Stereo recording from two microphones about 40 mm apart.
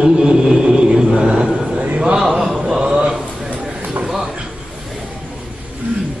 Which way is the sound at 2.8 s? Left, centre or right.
Right.